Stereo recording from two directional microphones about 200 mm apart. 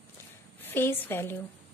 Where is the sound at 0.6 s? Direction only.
10° left (ahead or behind).